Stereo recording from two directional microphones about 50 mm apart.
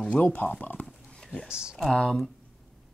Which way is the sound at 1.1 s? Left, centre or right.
Centre.